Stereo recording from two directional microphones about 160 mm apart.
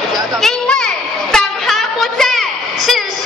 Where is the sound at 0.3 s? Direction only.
Centre (ahead or behind).